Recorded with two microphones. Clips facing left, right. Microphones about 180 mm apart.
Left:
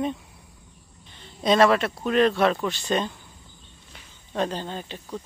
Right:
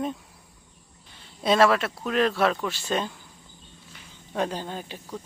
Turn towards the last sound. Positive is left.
turn(degrees=-10)  # may be behind; listen again after turning